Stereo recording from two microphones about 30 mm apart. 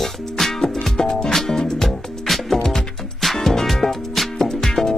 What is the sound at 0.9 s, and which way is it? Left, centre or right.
Music, left.